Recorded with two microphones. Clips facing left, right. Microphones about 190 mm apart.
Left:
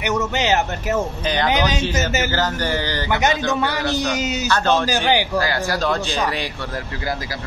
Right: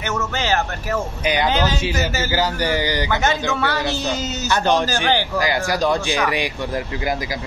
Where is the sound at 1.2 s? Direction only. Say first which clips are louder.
Right 1 dB; 10° right (ahead or behind).